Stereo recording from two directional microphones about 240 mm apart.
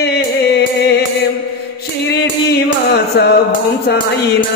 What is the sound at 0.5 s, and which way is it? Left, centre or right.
Music, left.